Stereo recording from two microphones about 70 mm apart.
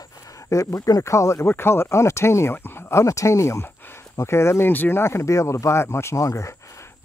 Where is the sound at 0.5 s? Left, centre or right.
Left.